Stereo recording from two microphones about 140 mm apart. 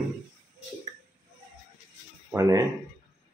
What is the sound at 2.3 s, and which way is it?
Speech, 20° right (ahead or behind).